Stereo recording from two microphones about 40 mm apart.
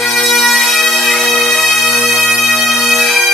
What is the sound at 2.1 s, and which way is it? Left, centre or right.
Bagpipes, left.